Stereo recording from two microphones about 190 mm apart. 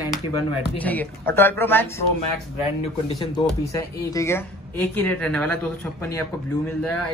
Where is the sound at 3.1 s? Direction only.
25° left (ahead or behind); by 5.7 s 5° left (ahead or behind).